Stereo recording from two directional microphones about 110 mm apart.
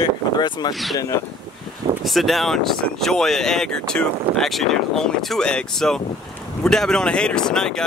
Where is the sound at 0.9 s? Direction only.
30° left (ahead or behind).